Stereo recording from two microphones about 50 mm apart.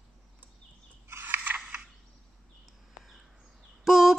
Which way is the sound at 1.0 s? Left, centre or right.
Right.